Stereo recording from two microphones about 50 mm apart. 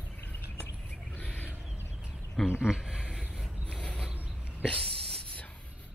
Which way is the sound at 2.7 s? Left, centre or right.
Centre.